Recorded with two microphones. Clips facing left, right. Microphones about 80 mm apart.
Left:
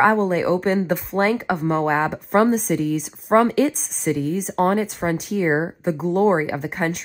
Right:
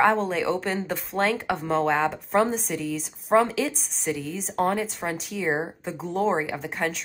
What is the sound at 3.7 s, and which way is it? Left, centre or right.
Speech, centre.